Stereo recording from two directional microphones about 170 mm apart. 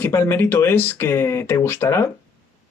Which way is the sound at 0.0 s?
15° left (ahead or behind).